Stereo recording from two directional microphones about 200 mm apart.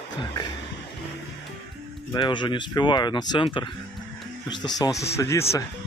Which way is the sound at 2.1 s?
25° left (ahead or behind).